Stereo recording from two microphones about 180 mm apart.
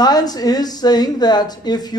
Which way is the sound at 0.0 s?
20° left (ahead or behind).